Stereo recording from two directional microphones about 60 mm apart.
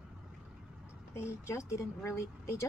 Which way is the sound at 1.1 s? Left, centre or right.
Left.